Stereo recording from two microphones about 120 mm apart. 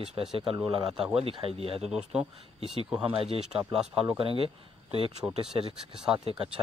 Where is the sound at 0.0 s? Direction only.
50° right (ahead or behind).